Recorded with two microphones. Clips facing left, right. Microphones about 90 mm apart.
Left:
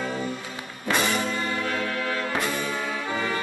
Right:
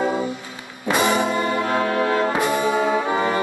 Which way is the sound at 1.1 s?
60° right (ahead or behind).